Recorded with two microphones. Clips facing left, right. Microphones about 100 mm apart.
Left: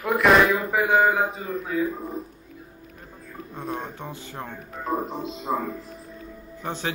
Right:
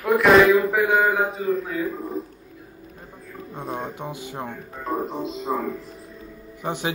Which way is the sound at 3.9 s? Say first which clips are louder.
Right 4 dB; 15° right (ahead or behind).